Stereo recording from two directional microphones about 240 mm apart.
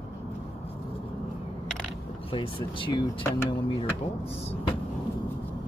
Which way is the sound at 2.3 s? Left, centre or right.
Left.